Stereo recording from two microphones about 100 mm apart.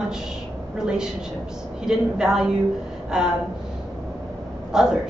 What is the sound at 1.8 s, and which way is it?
A woman's voice, 5° right (ahead or behind).